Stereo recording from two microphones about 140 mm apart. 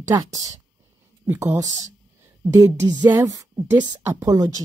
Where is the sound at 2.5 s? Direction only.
20° right (ahead or behind).